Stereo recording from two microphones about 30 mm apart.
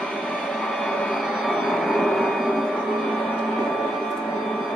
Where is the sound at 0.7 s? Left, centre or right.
Centre.